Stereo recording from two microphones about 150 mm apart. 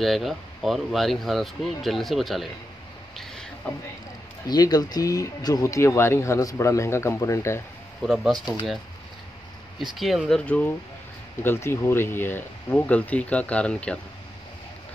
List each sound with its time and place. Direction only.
0.0 s speech: centre (ahead or behind)
3.2 s a sound: 5° left (ahead or behind)
4.5 s speech: 25° left (ahead or behind)
8.0 s speech: 5° right (ahead or behind)
9.9 s speech: centre (ahead or behind)